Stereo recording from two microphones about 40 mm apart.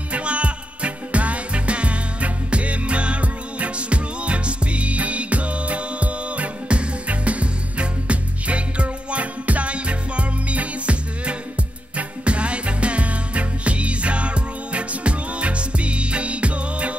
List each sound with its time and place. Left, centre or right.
0.1 s music: right